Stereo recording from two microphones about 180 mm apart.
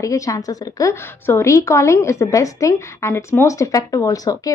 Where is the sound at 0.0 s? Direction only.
20° left (ahead or behind).